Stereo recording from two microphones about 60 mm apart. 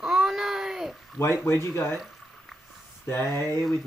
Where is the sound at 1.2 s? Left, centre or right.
Left.